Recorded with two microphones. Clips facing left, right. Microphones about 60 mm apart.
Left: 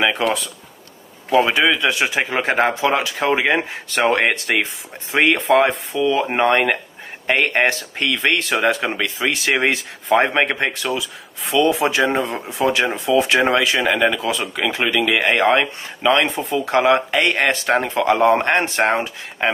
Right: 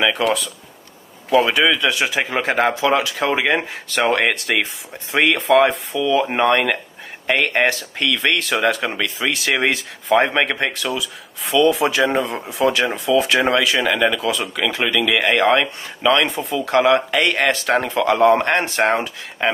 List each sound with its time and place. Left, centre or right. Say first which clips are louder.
1.7 s speech: even; left